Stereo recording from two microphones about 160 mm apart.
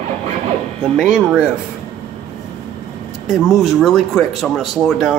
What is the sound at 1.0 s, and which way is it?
Speech, 5° right (ahead or behind).